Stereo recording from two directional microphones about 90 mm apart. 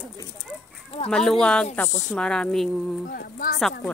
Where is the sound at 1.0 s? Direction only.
5° left (ahead or behind).